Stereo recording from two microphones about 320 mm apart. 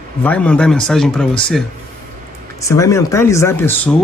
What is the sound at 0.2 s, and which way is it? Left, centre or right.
Speech, centre.